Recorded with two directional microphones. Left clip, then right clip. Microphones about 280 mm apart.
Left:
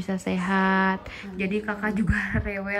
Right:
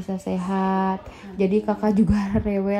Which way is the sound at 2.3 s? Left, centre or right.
Left.